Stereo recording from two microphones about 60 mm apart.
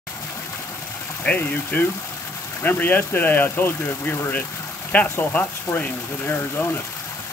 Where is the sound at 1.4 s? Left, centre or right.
Left.